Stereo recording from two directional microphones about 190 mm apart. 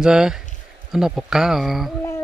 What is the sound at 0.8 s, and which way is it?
Speech, 5° right (ahead or behind).